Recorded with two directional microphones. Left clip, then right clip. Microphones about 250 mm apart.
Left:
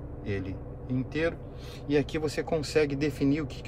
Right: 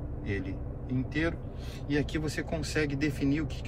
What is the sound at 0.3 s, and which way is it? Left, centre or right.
Speech, centre.